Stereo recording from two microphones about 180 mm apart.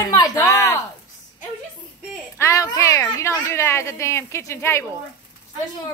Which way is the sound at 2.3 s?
15° left (ahead or behind).